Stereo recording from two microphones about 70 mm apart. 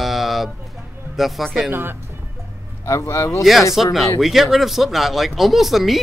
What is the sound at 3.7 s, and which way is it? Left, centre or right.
Speech, centre.